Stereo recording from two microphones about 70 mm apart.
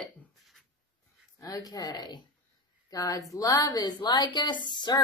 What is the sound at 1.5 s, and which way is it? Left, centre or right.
A woman's voice, left.